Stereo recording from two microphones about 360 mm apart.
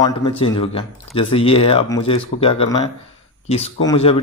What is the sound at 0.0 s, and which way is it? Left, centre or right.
Speech, centre.